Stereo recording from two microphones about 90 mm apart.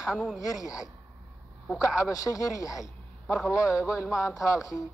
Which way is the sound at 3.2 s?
5° left (ahead or behind).